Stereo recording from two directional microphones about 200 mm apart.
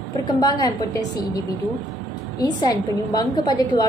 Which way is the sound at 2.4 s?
20° left (ahead or behind).